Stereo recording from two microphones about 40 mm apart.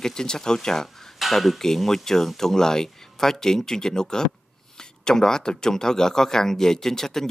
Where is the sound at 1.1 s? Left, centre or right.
Centre.